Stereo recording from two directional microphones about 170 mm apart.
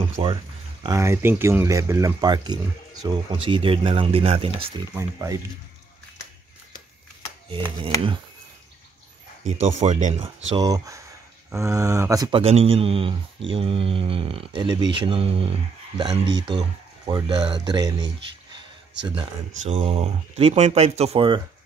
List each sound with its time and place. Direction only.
0.2 s speech: 35° right (ahead or behind)
0.8 s speech: 15° right (ahead or behind); by 4.5 s 35° right (ahead or behind)
4.9 s speech: 20° right (ahead or behind)
7.4 s speech: 30° right (ahead or behind)
9.4 s speech: 40° right (ahead or behind)
10.1 s speech: 25° right (ahead or behind)
12.4 s speech: 35° right (ahead or behind)
19.6 s speech: 35° right (ahead or behind)